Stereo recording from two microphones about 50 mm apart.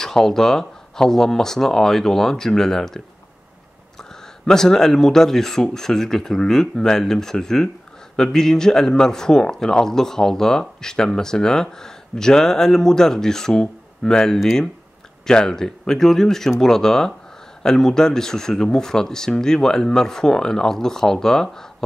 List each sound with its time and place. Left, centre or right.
0.0 s a man's voice: centre
4.5 s a man's voice: centre